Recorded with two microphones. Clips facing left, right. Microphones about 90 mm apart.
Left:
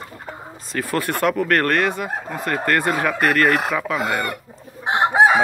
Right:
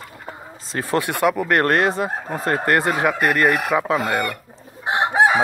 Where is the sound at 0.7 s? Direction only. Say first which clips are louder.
Right 2 dB; 30° right (ahead or behind).